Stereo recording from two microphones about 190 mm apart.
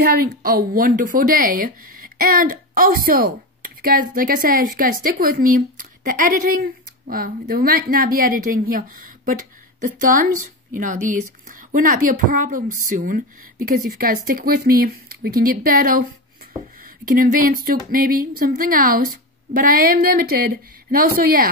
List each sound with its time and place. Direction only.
0.2 s a woman's voice: 50° right (ahead or behind)
17.0 s speech: 45° right (ahead or behind)